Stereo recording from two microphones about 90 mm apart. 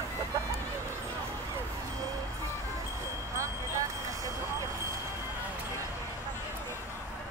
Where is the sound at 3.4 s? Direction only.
35° right (ahead or behind).